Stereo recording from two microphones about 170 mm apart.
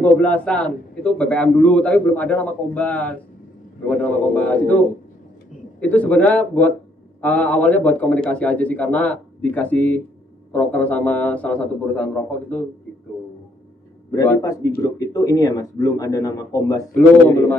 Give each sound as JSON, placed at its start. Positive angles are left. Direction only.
{"t": 0.0, "sound": "a man's voice", "side_deg": 10}
{"t": 5.8, "sound": "a man's voice", "side_deg": 10}
{"t": 14.1, "sound": "speech", "side_deg": 15}